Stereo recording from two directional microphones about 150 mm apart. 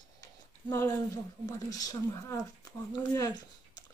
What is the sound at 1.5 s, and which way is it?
Speech, 25° left (ahead or behind).